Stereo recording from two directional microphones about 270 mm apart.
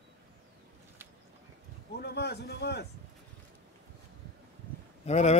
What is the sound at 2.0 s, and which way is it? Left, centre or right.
Speech, left.